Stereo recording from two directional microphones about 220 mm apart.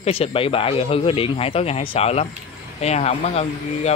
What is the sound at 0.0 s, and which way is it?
Speech, 25° left (ahead or behind).